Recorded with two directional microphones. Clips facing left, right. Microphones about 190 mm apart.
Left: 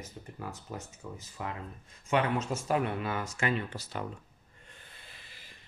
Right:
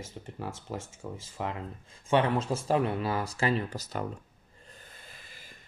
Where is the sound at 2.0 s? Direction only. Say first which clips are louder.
Right 3 dB; 30° right (ahead or behind).